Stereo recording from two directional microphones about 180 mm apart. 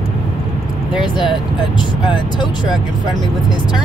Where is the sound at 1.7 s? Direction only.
25° left (ahead or behind).